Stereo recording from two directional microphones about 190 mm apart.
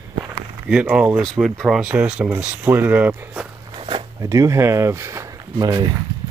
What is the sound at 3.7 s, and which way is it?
Speech, 25° right (ahead or behind).